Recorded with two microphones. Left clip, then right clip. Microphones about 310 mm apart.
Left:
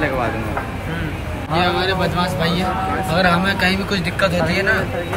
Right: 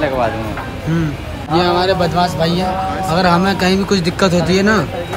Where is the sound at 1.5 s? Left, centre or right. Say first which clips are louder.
Right 4 dB; centre.